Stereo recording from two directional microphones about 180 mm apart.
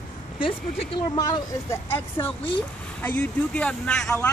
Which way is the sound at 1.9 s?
10° left (ahead or behind).